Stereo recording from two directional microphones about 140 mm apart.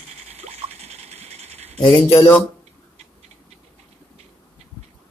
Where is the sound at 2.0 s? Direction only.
20° left (ahead or behind).